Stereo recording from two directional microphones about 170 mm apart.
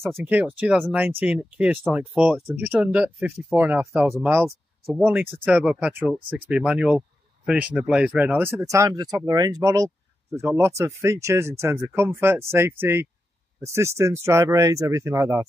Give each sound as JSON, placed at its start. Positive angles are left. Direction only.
{"t": 0.0, "sound": "speech", "side_deg": -10}
{"t": 3.5, "sound": "speech", "side_deg": -10}